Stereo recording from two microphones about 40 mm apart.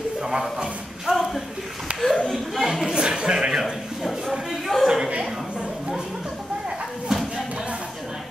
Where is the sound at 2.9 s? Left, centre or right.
Centre.